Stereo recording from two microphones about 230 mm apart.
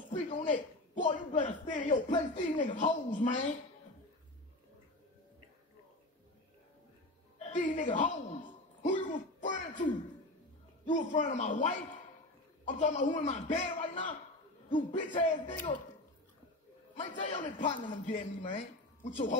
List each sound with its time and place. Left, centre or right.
0.3 s a man's voice: left
7.4 s a woman's voice: left
8.8 s a sound: left
10.9 s a man's voice: left
16.9 s a man's voice: left